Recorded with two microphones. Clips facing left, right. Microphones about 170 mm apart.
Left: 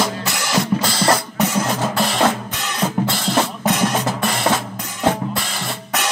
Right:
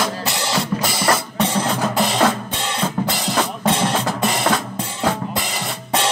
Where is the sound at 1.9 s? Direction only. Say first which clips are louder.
Right 1 dB; 20° right (ahead or behind).